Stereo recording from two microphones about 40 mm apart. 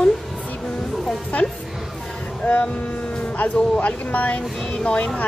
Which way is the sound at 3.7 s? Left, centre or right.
Left.